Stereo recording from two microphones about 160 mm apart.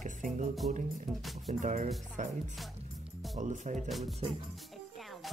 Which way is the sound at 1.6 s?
50° right (ahead or behind).